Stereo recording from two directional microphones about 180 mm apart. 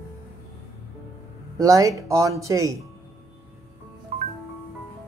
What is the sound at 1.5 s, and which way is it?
Speech, 20° right (ahead or behind).